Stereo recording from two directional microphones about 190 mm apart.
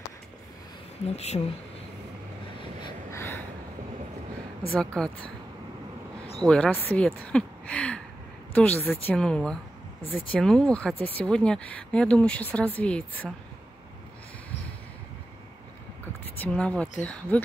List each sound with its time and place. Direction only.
1.0 s speech: 35° left (ahead or behind)
3.1 s gasp: 10° left (ahead or behind)
4.6 s speech: 5° left (ahead or behind)
6.4 s speech: 5° left (ahead or behind)
16.3 s speech: 5° left (ahead or behind)